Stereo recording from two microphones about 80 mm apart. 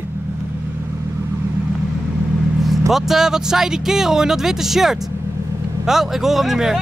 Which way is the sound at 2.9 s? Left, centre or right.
Centre.